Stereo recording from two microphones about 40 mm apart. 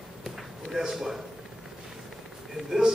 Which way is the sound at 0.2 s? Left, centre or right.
Centre.